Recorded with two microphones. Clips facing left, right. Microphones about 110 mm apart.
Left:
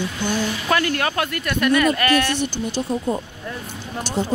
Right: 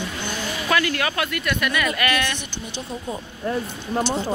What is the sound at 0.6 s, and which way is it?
Speech, 35° left (ahead or behind).